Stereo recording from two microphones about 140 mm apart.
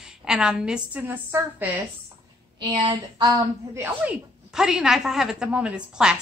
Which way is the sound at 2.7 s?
50° right (ahead or behind).